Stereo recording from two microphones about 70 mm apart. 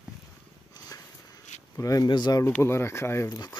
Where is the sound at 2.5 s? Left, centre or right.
Left.